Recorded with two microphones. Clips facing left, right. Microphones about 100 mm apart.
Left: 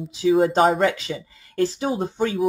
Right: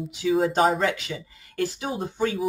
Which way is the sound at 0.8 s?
30° left (ahead or behind).